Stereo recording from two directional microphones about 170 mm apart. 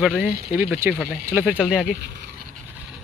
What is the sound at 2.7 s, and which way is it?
Vehicle, 5° right (ahead or behind).